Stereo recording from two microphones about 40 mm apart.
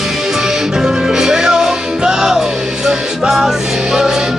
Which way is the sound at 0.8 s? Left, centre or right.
Centre.